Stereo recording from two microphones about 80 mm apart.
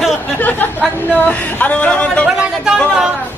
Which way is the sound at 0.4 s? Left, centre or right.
Left.